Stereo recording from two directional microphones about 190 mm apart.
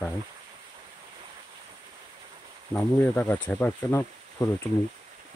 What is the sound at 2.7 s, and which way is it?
Speech, 10° left (ahead or behind).